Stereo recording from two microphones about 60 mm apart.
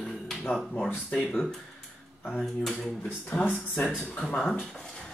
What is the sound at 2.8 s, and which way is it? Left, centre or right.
Speech, left.